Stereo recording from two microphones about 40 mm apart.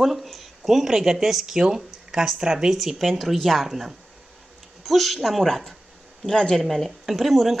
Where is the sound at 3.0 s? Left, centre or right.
Centre.